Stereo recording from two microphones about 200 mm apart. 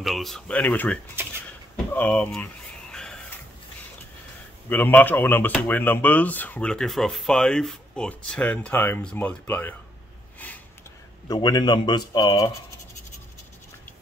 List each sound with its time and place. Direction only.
0.0 s speech: centre (ahead or behind)
1.2 s speech: 10° right (ahead or behind)
2.0 s a sound: 5° left (ahead or behind)
4.6 s speech: 10° left (ahead or behind)
11.2 s speech: 20° left (ahead or behind)